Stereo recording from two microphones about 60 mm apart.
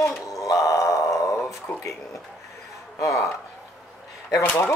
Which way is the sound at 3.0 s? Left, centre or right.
Left.